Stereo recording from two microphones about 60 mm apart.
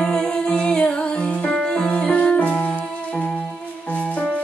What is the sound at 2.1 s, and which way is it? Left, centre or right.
Music, left.